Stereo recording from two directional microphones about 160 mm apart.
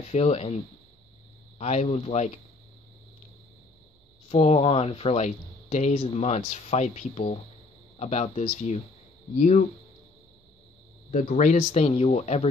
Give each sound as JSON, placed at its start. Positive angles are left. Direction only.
{"t": 0.1, "sound": "speech", "side_deg": 40}
{"t": 1.6, "sound": "speech", "side_deg": 45}
{"t": 4.3, "sound": "speech", "side_deg": 40}
{"t": 11.1, "sound": "speech", "side_deg": 50}
{"t": 11.5, "sound": "speech", "side_deg": 40}